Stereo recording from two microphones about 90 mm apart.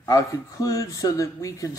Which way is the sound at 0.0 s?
40° left (ahead or behind).